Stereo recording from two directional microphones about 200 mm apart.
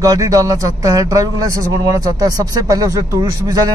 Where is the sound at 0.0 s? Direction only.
15° right (ahead or behind).